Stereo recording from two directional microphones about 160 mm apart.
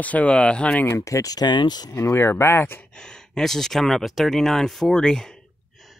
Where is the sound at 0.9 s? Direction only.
20° left (ahead or behind).